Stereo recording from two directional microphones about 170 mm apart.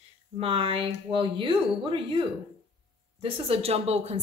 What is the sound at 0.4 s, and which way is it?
Speech, 35° right (ahead or behind).